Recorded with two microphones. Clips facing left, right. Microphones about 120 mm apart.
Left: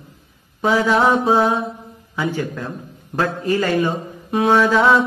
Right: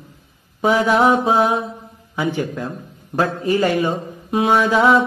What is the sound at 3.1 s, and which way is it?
Speech, 15° right (ahead or behind).